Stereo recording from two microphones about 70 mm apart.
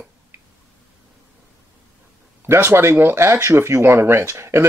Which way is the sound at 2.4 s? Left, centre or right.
Right.